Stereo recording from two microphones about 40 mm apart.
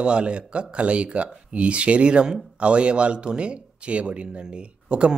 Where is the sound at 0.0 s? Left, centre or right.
Right.